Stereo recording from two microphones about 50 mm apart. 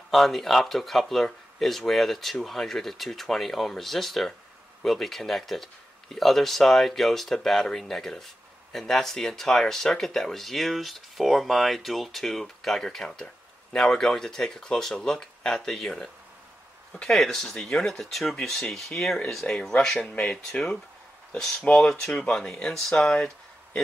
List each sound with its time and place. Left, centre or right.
0.1 s speech: centre
20.0 s speech: centre
21.4 s speech: centre